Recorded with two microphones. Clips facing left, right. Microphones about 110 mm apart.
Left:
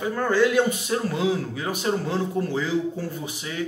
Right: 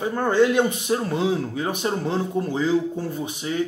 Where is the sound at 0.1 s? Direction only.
25° right (ahead or behind).